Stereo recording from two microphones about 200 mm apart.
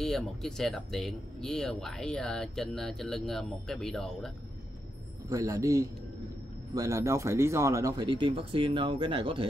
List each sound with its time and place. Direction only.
0.0 s speech: centre (ahead or behind)
5.3 s a man's voice: 15° right (ahead or behind)